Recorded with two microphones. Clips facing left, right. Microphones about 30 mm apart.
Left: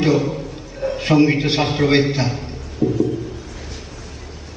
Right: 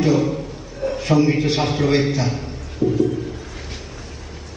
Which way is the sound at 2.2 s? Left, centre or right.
Centre.